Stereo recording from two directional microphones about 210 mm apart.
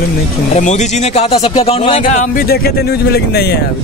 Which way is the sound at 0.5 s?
35° left (ahead or behind).